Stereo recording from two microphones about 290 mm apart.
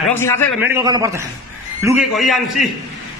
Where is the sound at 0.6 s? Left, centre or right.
Centre.